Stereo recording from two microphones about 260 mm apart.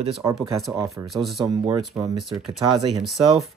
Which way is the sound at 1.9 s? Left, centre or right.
Centre.